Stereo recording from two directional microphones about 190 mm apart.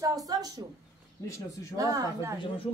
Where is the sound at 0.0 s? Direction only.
20° right (ahead or behind).